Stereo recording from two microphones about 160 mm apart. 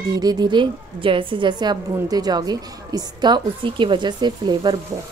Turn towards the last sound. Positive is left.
turn(degrees=-25)  # may be behind; listen again after turning